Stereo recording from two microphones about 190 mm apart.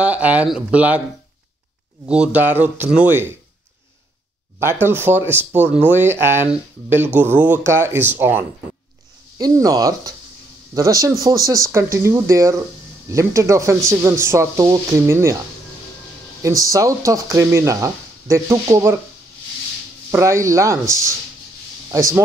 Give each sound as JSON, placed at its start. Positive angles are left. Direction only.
{"t": 0.0, "sound": "speech", "side_deg": -5}
{"t": 2.0, "sound": "speech", "side_deg": -5}
{"t": 4.6, "sound": "speech", "side_deg": -10}
{"t": 9.4, "sound": "speech", "side_deg": -20}
{"t": 16.4, "sound": "speech", "side_deg": -15}
{"t": 20.1, "sound": "speech", "side_deg": -15}